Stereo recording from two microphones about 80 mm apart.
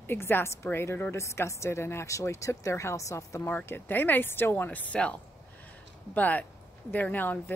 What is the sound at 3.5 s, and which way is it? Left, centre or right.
A woman's voice, left.